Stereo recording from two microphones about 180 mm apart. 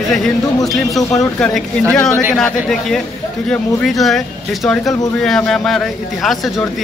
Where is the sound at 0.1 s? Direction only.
Centre (ahead or behind).